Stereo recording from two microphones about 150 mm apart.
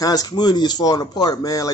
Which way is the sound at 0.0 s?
25° left (ahead or behind).